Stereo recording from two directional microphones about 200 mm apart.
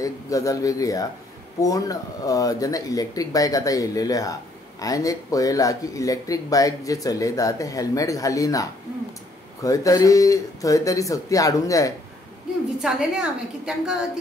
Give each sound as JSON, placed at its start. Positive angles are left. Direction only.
{"t": 0.0, "sound": "speech", "side_deg": 15}
{"t": 12.8, "sound": "a woman's voice", "side_deg": -5}